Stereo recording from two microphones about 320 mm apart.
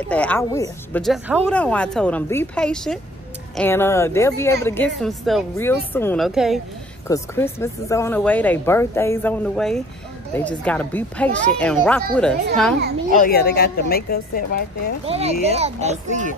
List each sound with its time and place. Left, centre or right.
0.1 s a child's voice: centre
13.1 s a woman's voice: left
15.0 s a child's voice: centre